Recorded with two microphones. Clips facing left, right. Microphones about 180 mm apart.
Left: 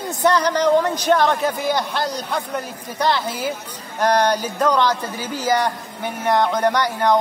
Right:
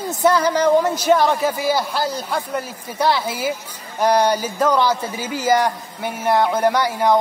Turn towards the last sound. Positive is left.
turn(degrees=-10)  # may be behind; listen again after turning